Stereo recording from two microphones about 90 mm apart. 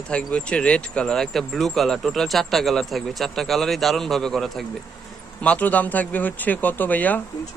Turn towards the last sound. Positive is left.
turn(degrees=20)  # may be behind; listen again after turning